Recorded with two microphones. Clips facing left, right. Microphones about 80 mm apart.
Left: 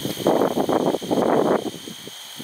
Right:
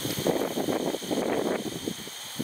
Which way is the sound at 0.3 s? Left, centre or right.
Left.